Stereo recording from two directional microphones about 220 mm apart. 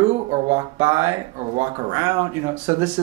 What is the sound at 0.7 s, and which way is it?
Speech, 10° right (ahead or behind).